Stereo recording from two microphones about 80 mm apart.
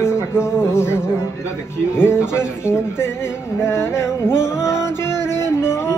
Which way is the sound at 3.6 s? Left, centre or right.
Left.